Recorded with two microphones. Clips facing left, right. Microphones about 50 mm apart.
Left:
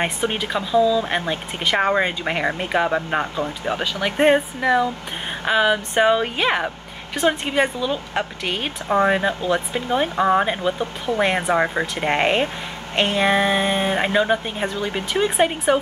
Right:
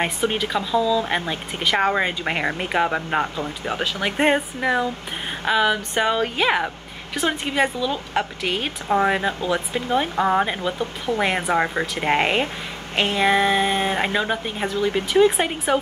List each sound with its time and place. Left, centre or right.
0.0 s speech: centre